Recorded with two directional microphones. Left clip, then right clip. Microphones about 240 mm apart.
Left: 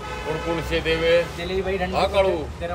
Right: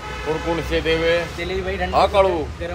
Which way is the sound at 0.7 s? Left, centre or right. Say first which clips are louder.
Even; centre.